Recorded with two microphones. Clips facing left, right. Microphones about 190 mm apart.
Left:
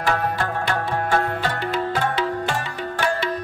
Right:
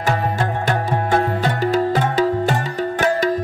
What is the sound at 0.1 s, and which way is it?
Music, 20° right (ahead or behind).